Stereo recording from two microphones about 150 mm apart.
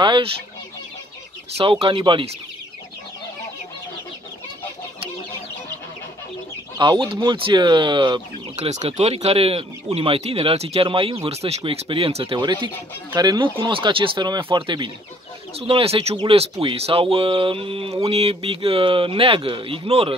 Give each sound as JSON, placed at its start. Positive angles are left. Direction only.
{"t": 0.0, "sound": "speech", "side_deg": -30}
{"t": 1.5, "sound": "speech", "side_deg": -40}
{"t": 6.8, "sound": "speech", "side_deg": -30}
{"t": 8.5, "sound": "speech", "side_deg": -45}